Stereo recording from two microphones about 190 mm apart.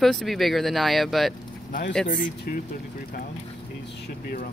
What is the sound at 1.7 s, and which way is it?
Speech, 60° left (ahead or behind).